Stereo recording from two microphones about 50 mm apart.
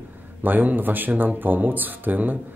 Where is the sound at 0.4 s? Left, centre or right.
Right.